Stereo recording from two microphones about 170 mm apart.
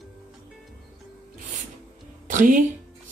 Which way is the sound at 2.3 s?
50° right (ahead or behind).